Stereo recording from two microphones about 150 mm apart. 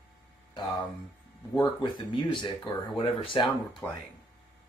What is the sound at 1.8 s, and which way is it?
Speech, 30° left (ahead or behind).